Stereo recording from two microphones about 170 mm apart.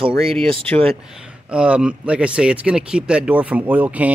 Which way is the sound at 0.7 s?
10° left (ahead or behind).